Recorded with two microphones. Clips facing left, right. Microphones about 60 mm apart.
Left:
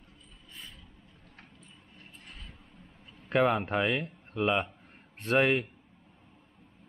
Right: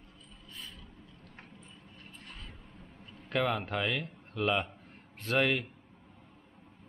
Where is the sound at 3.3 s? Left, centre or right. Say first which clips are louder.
Left 5 dB; left.